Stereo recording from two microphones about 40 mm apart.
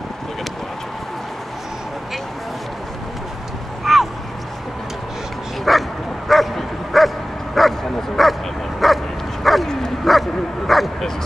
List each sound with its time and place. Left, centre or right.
3.8 s a sound: centre
5.7 s bow-wow: centre
8.2 s dog: centre
9.7 s bow-wow: centre
10.0 s bow-wow: centre